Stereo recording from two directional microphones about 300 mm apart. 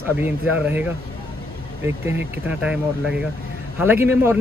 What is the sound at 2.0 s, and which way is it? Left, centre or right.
A man's voice, centre.